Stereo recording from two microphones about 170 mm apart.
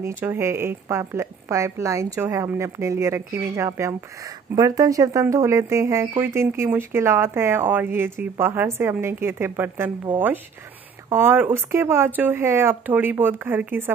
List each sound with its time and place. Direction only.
0.0 s speech: 10° right (ahead or behind)